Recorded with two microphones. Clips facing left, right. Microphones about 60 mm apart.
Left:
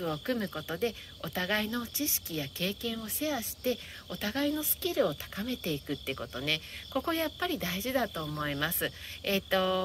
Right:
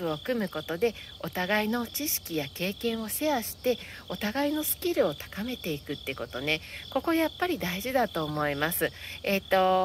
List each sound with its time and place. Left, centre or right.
0.3 s speech: right